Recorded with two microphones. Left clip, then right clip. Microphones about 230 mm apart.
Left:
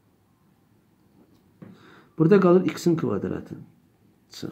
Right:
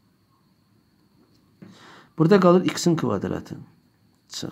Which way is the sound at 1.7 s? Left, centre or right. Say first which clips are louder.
Right 1 dB; right.